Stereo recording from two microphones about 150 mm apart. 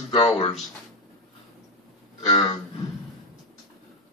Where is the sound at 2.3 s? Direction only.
30° left (ahead or behind).